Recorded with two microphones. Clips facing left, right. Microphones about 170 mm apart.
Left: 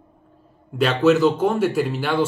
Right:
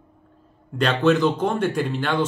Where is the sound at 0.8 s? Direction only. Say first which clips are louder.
Left 2 dB; 5° left (ahead or behind).